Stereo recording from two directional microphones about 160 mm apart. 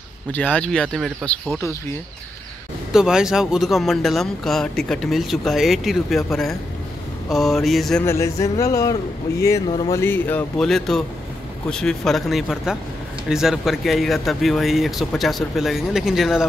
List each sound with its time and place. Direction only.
0.3 s speech: 10° left (ahead or behind)
2.9 s speech: 5° right (ahead or behind)
8.0 s speech: 15° left (ahead or behind); by 16.4 s 5° right (ahead or behind)